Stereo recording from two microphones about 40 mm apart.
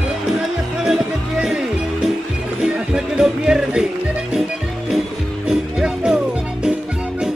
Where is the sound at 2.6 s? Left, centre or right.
Centre.